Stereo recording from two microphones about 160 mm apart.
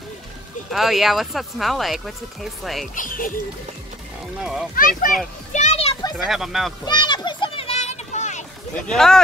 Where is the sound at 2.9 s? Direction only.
55° left (ahead or behind).